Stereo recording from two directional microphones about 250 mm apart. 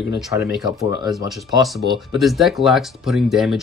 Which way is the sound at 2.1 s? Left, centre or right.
Centre.